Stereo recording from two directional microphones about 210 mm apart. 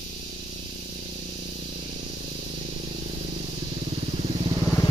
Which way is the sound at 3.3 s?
30° right (ahead or behind).